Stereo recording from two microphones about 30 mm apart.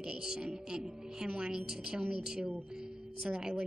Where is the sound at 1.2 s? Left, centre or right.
Right.